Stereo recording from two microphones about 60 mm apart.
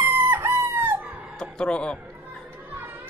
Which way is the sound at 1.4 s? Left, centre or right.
Centre.